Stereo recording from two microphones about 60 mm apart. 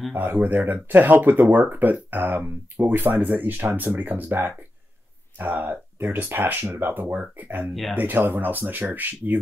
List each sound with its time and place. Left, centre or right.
0.1 s speech: right